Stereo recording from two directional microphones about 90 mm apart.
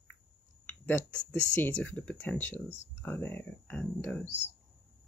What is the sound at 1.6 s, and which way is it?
Speech, 15° left (ahead or behind).